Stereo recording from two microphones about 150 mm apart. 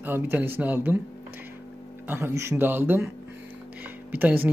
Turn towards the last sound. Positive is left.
turn(degrees=-10)  # may be behind; listen again after turning